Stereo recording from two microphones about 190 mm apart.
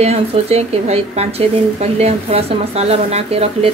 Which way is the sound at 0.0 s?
35° right (ahead or behind).